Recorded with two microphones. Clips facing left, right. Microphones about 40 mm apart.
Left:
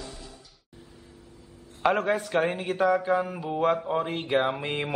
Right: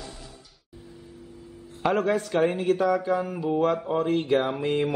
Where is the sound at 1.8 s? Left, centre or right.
Centre.